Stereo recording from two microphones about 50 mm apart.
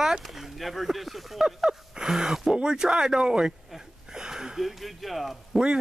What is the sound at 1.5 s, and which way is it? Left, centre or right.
Speech, centre.